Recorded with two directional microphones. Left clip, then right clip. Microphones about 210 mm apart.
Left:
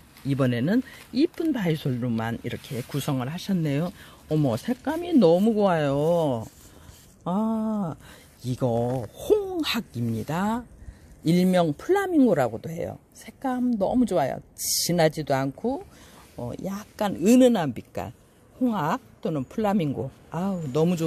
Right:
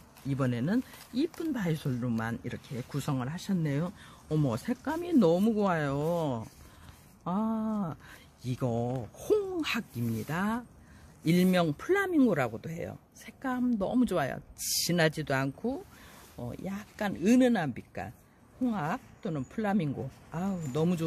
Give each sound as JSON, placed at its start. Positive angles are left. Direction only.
{"t": 0.3, "sound": "speech", "side_deg": 35}